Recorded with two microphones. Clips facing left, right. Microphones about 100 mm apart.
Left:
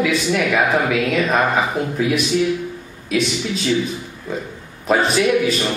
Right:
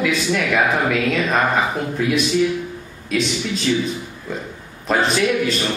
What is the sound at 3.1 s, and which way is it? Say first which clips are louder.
Speech: left 1 dB; 5° left (ahead or behind).